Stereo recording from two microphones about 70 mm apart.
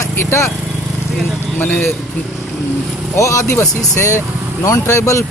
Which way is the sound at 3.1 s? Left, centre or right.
Left.